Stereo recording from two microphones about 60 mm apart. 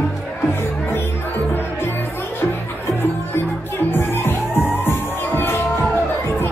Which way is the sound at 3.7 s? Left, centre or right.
Left.